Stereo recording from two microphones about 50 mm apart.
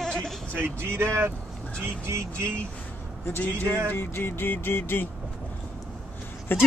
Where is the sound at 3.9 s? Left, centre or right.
Left.